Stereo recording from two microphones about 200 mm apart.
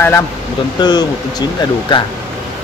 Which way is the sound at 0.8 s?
20° left (ahead or behind).